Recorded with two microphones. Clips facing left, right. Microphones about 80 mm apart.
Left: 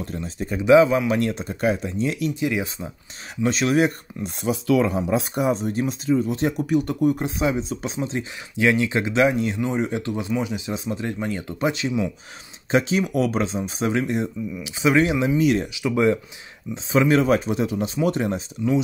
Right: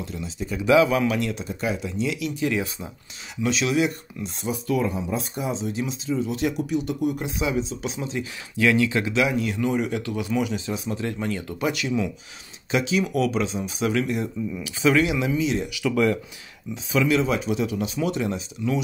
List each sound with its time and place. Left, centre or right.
0.0 s speech: left
0.7 s speech: left
1.1 s speech: left
2.4 s speech: centre
3.4 s speech: left
4.5 s speech: left
5.1 s speech: left
8.5 s speech: left
15.0 s speech: left
15.3 s speech: left
15.7 s speech: left
16.7 s speech: left